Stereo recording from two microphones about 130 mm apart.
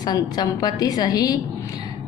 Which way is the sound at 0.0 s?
30° left (ahead or behind).